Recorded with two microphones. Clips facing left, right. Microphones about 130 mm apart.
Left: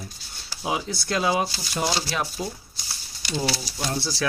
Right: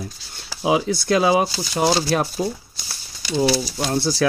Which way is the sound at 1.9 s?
50° right (ahead or behind).